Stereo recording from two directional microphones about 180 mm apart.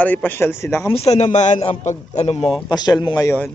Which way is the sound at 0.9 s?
35° left (ahead or behind).